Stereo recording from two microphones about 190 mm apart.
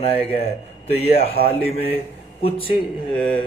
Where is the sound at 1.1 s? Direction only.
55° left (ahead or behind).